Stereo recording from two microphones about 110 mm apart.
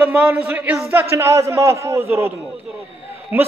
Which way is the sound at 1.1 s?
25° right (ahead or behind).